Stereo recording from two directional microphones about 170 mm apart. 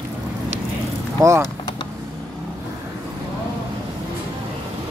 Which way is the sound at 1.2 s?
20° right (ahead or behind).